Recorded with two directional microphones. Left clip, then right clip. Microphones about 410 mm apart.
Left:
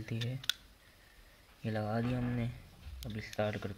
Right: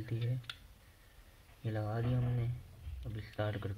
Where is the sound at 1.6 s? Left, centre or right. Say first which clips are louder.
Left 4 dB; centre.